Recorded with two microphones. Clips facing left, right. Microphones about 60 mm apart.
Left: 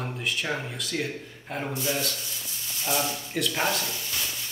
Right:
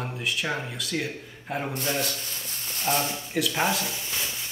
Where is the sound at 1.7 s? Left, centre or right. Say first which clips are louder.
Left 1 dB; right.